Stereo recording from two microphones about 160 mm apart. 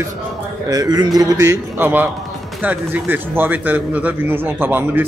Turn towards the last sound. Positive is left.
turn(degrees=-10)  # may be behind; listen again after turning